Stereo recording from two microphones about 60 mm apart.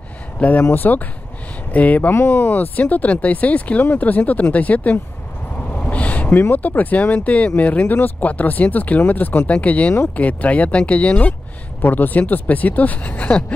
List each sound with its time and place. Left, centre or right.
0.4 s speech: left
5.8 s a sound: left
6.5 s speech: left